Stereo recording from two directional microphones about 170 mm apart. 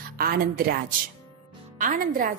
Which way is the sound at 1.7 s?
55° right (ahead or behind).